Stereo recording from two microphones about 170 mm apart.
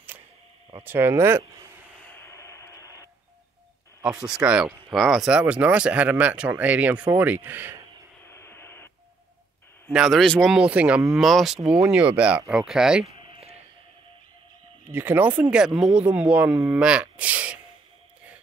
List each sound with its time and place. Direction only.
0.8 s speech: 15° right (ahead or behind)
2.0 s radio: 15° left (ahead or behind)
4.5 s speech: 5° right (ahead or behind)
8.2 s vehicle: 15° left (ahead or behind)
9.8 s speech: centre (ahead or behind)
13.0 s a sound: 35° right (ahead or behind)
14.9 s speech: 10° right (ahead or behind)